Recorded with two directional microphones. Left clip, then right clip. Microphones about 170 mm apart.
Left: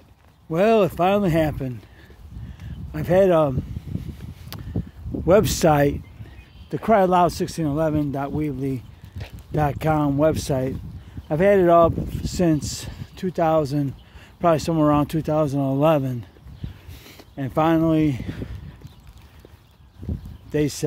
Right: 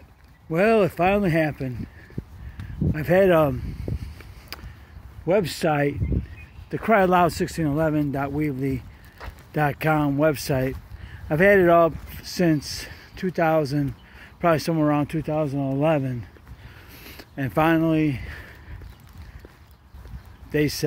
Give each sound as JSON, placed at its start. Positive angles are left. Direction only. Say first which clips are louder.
{"t": 0.5, "sound": "speech", "louder": "left 1 dB", "side_deg": 15}
{"t": 2.9, "sound": "speech", "louder": "left 1 dB", "side_deg": 10}
{"t": 4.5, "sound": "a sound", "louder": "right 1 dB", "side_deg": 15}
{"t": 5.2, "sound": "speech", "louder": "left 5 dB", "side_deg": 40}
{"t": 6.7, "sound": "speech", "louder": "left 1 dB", "side_deg": 15}
{"t": 16.9, "sound": "speech", "louder": "right 2 dB", "side_deg": 0}
{"t": 20.5, "sound": "speech", "louder": "even", "side_deg": 15}